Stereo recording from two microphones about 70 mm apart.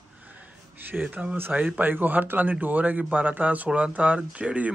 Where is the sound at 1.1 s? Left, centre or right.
Right.